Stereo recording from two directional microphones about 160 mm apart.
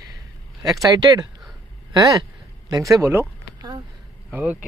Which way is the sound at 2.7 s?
20° right (ahead or behind).